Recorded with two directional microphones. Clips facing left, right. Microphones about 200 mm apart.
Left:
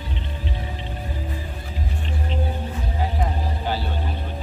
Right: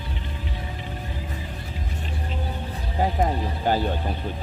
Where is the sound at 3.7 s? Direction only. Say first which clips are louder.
Right 5 dB; 45° right (ahead or behind).